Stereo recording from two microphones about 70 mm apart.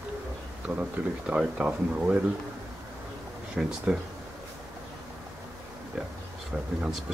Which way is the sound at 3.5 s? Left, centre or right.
Centre.